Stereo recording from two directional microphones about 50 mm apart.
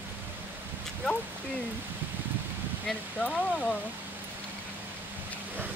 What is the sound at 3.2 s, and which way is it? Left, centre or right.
Speech, left.